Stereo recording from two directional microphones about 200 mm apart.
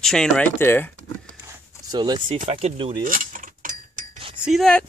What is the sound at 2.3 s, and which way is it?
Speech, 30° right (ahead or behind).